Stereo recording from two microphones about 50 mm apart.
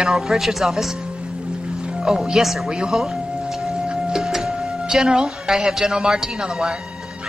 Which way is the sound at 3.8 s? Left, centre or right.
Centre.